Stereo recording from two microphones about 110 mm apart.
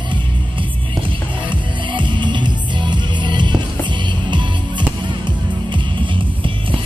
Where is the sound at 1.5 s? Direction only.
45° right (ahead or behind).